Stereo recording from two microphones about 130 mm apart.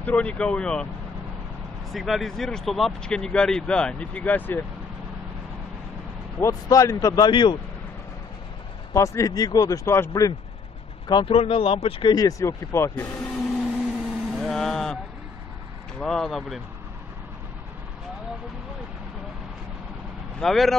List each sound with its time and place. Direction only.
0.0 s speech: 10° left (ahead or behind)
1.9 s speech: centre (ahead or behind)
6.4 s speech: 25° left (ahead or behind)
8.9 s speech: 25° left (ahead or behind)
11.1 s speech: 35° left (ahead or behind); by 15.0 s 5° left (ahead or behind)
16.0 s speech: centre (ahead or behind)
20.3 s speech: centre (ahead or behind)